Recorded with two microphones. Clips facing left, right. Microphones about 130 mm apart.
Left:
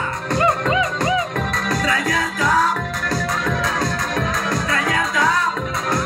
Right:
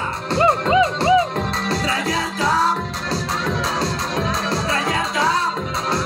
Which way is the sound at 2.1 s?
30° right (ahead or behind).